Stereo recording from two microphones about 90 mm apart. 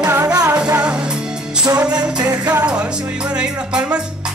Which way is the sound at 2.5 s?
15° right (ahead or behind).